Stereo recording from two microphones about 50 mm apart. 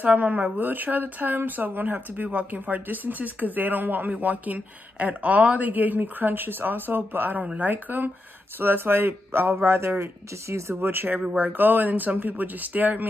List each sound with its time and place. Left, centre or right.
0.0 s speech: right
11.3 s speech: right